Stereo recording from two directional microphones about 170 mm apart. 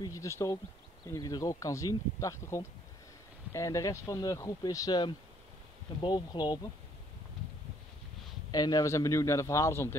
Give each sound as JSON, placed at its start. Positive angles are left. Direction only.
{"t": 0.0, "sound": "speech", "side_deg": 20}
{"t": 8.5, "sound": "a man's voice", "side_deg": 25}